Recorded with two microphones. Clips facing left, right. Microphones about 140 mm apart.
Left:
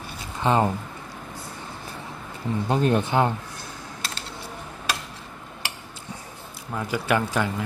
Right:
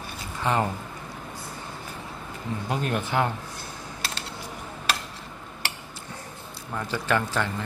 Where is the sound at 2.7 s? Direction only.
30° left (ahead or behind).